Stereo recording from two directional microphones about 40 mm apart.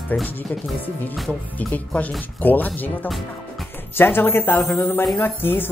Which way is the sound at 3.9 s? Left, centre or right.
Left.